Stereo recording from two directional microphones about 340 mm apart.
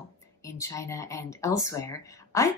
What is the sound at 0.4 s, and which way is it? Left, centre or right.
Speech, centre.